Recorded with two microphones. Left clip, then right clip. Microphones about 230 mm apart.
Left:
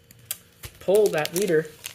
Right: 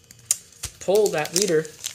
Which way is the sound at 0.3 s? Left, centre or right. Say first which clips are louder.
Right 10 dB; centre.